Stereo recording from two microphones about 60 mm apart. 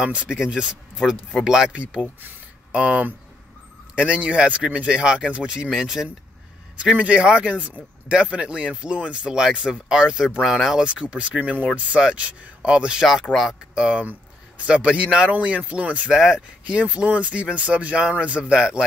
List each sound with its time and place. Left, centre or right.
0.0 s speech: centre
5.7 s speech: centre
6.8 s speech: centre
13.0 s speech: centre
14.7 s speech: centre
16.1 s speech: centre
16.6 s speech: centre